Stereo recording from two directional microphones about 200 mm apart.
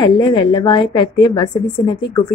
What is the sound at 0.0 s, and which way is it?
A woman's voice, 20° left (ahead or behind).